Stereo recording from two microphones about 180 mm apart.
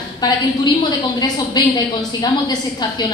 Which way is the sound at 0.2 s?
20° left (ahead or behind).